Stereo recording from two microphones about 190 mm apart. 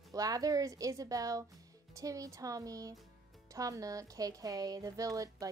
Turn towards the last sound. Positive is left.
turn(degrees=-20)  # may be behind; listen again after turning